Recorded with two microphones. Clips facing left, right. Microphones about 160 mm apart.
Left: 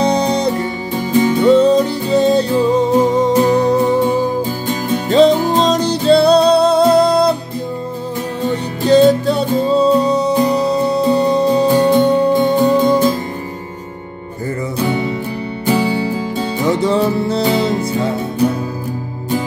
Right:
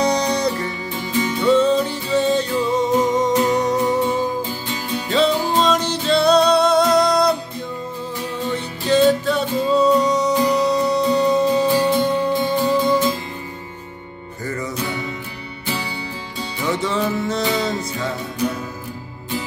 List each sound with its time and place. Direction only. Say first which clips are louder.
0.0 s music: left 4 dB; 25° left (ahead or behind)
0.9 s music: left 9 dB; 45° left (ahead or behind); by 4.0 s 30° left (ahead or behind)
4.6 s music: left 8 dB; 50° left (ahead or behind); by 7.3 s 30° left (ahead or behind)
8.8 s music: left 6 dB; 40° left (ahead or behind)
11.7 s music: left 6 dB; 50° left (ahead or behind)
14.8 s music: left 8 dB; 30° left (ahead or behind)
15.6 s music: left 12 dB; 55° left (ahead or behind)
16.6 s music: left 6 dB; 35° left (ahead or behind)